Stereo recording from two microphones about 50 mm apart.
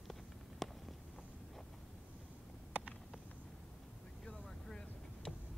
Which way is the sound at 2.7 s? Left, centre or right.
Right.